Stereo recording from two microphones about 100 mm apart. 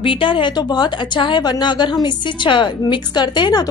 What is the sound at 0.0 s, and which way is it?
Speech, 60° left (ahead or behind).